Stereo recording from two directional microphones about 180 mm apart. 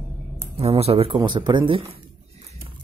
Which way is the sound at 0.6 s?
35° right (ahead or behind).